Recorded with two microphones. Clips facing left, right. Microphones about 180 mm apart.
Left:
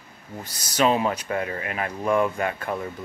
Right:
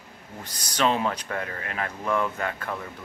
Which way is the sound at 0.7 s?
10° left (ahead or behind).